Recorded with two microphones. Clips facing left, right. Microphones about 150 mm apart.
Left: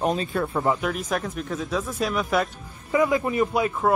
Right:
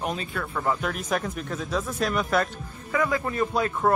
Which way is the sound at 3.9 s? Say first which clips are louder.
Left 1 dB; centre (ahead or behind).